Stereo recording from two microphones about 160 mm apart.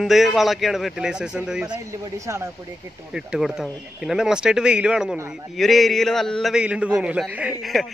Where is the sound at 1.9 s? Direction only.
20° right (ahead or behind).